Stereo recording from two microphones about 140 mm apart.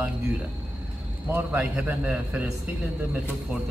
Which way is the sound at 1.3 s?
15° right (ahead or behind).